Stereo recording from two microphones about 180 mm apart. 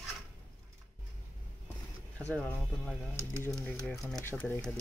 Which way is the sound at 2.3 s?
5° left (ahead or behind).